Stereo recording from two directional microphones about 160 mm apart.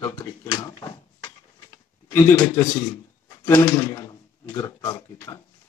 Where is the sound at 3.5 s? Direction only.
20° left (ahead or behind).